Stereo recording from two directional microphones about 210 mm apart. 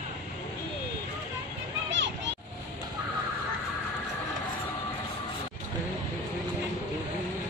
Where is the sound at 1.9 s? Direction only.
60° right (ahead or behind).